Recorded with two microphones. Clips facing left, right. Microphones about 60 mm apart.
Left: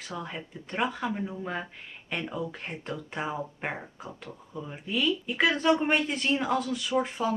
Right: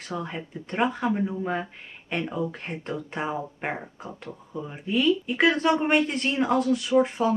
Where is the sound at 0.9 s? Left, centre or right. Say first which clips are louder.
Right 5 dB; right.